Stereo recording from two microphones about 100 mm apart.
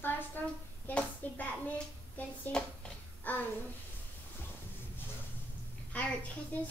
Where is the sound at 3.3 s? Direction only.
15° left (ahead or behind).